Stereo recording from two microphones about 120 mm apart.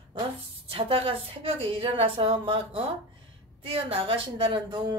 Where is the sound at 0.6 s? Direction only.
50° right (ahead or behind).